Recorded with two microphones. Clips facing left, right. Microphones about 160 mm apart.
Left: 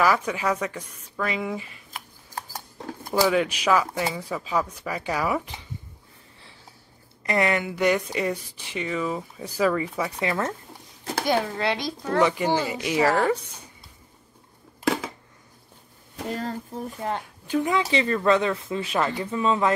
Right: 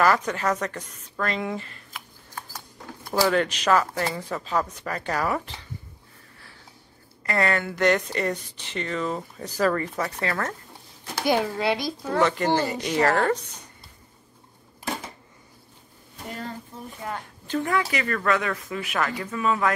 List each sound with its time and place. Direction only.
0.0 s speech: 10° left (ahead or behind)
2.0 s a sound: 45° left (ahead or behind)
3.1 s speech: 10° left (ahead or behind)
7.2 s speech: 15° left (ahead or behind)
11.2 s a child's voice: 10° right (ahead or behind)
12.2 s speech: 10° left (ahead or behind)
16.3 s speech: 40° left (ahead or behind)
17.5 s speech: 10° left (ahead or behind)
17.9 s speech: 25° left (ahead or behind)